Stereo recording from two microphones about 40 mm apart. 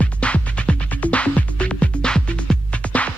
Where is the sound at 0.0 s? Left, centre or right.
Left.